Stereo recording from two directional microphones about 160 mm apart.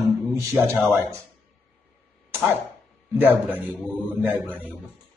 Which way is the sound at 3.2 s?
10° right (ahead or behind).